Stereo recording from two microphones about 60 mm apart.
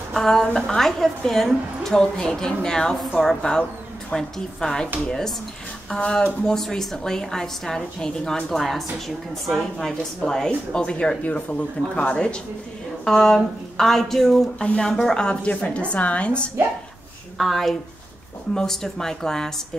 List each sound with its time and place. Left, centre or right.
0.1 s a woman's voice: centre
17.4 s speech: centre